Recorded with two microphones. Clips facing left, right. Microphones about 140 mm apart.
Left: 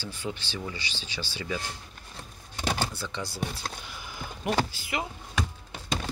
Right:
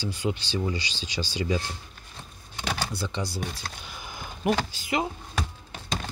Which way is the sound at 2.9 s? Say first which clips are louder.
Right 4 dB; 15° right (ahead or behind).